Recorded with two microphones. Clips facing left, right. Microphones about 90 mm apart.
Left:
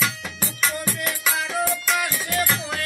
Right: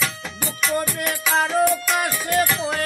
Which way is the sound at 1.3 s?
45° right (ahead or behind).